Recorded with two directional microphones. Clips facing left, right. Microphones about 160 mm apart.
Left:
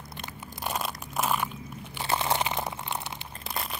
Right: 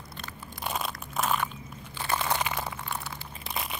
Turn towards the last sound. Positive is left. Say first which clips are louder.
# even
turn(degrees=0)  # may be behind; listen again after turning